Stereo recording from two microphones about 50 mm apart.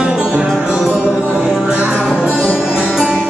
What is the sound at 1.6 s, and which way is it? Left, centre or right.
Music, right.